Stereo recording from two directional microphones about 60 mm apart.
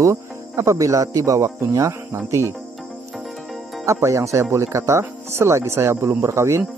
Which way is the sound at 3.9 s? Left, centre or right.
Right.